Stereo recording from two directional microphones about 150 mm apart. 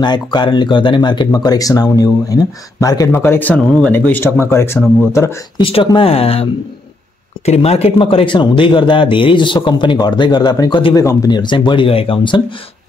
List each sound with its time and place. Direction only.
0.0 s speech: 30° left (ahead or behind)
5.6 s speech: 40° left (ahead or behind)